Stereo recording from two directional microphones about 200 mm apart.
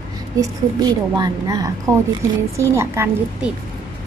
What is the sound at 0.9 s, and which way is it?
Speech, 20° right (ahead or behind).